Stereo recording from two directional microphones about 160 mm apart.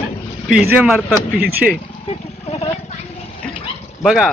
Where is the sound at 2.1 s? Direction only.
40° left (ahead or behind).